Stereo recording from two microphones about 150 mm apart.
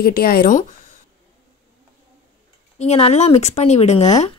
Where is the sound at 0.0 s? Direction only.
90° left.